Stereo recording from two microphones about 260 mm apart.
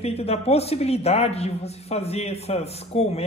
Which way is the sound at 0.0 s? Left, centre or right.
Left.